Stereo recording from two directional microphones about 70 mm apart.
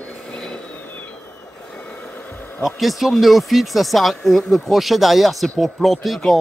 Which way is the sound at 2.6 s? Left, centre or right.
Centre.